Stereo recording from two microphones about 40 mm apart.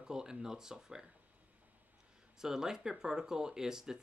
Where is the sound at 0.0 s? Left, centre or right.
Centre.